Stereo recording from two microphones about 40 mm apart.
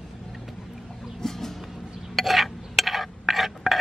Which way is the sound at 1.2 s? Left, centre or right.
Centre.